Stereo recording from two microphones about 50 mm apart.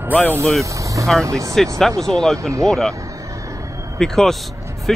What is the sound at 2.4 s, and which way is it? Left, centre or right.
Speech, right.